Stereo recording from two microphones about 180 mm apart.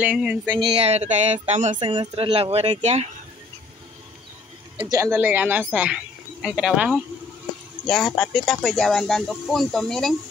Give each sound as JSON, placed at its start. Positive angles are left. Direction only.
{"t": 0.0, "sound": "speech", "side_deg": -10}
{"t": 0.6, "sound": "speech", "side_deg": -35}
{"t": 1.8, "sound": "speech", "side_deg": -30}
{"t": 4.9, "sound": "speech", "side_deg": -10}